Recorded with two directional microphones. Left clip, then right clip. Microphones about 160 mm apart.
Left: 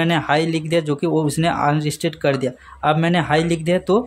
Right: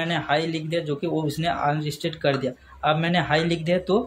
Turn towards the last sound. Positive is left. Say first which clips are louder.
# left 4 dB
turn(degrees=30)  # may be behind; listen again after turning